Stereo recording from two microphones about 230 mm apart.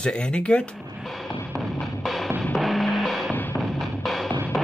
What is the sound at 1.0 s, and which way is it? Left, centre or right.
Music, centre.